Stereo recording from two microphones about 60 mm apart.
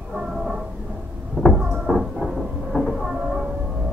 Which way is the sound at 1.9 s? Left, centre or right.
Centre.